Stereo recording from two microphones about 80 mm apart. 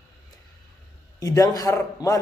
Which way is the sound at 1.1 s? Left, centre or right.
Left.